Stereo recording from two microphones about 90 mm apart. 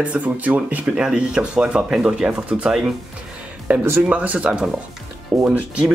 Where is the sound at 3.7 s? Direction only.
20° right (ahead or behind).